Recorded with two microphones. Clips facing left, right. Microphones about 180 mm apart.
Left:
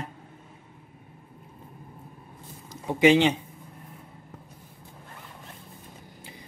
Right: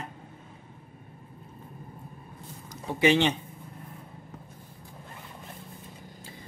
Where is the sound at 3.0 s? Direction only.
15° left (ahead or behind).